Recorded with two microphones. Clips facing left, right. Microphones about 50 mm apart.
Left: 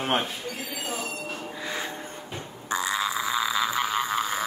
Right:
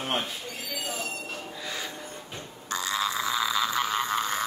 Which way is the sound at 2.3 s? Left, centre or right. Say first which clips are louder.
Left 4 dB; centre.